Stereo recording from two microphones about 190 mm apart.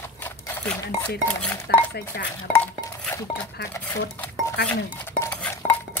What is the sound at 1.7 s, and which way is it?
Speech, 60° left (ahead or behind).